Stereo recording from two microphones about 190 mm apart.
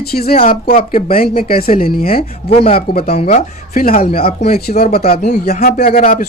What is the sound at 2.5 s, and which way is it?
Speech, 30° left (ahead or behind).